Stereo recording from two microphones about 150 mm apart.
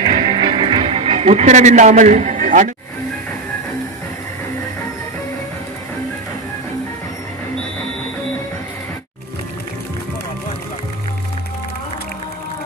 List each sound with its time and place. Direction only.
0.0 s music: 45° right (ahead or behind)
0.4 s music: 30° right (ahead or behind); by 2.7 s 60° right (ahead or behind)